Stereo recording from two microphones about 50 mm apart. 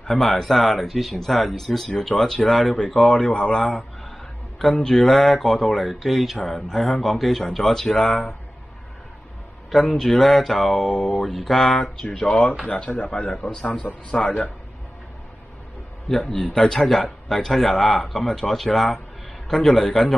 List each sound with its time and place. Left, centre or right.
0.0 s speech: centre
9.7 s speech: centre
13.4 s a man's voice: left
16.1 s speech: centre